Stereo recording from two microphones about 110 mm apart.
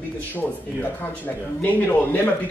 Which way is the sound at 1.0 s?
15° left (ahead or behind).